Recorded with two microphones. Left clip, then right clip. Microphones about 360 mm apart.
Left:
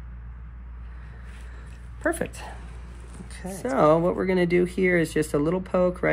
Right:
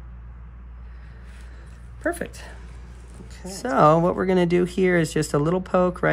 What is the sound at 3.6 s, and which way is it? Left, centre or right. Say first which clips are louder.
Speech: right 3 dB; right.